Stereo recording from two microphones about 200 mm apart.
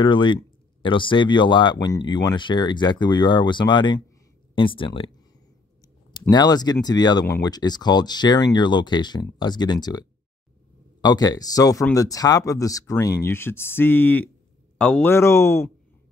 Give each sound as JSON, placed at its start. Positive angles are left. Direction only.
{"t": 0.0, "sound": "speech", "side_deg": 25}
{"t": 6.3, "sound": "speech", "side_deg": 20}